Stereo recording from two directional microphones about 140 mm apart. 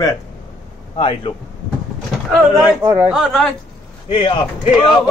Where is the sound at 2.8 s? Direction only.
10° right (ahead or behind).